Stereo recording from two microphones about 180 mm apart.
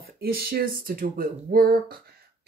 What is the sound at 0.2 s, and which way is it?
Speech, 55° right (ahead or behind).